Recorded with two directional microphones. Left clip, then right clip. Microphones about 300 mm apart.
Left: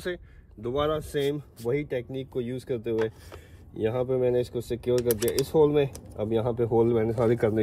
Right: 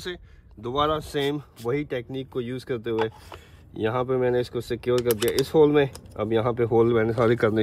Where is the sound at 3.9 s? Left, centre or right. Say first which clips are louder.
Right 3 dB; centre.